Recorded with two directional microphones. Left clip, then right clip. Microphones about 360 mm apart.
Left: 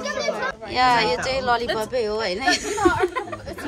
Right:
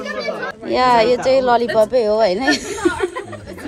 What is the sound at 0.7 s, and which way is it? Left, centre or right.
Speech, centre.